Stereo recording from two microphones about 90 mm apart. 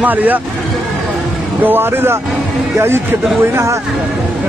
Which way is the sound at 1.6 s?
25° right (ahead or behind).